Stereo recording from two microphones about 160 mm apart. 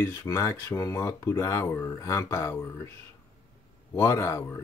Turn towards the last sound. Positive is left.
turn(degrees=15)  # may be behind; listen again after turning